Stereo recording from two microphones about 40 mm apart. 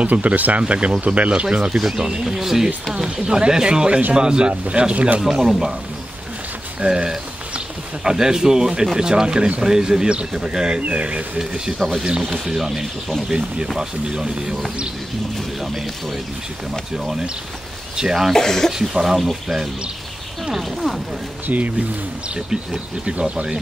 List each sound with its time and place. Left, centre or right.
0.0 s speech: right
1.4 s speech: right
5.4 s speech: centre
6.8 s speech: centre
11.3 s speech: centre
15.6 s speech: centre
18.3 s speech: centre
18.7 s speech: centre
21.5 s speech: right
23.0 s speech: right